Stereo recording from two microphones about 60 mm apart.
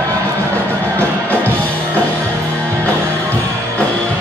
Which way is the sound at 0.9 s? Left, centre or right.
Left.